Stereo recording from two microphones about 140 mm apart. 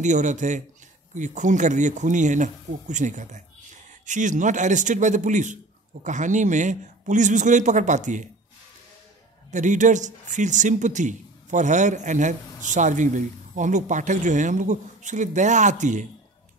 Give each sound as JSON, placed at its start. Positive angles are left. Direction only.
{"t": 0.0, "sound": "a man's voice", "side_deg": -60}
{"t": 9.5, "sound": "a man's voice", "side_deg": -60}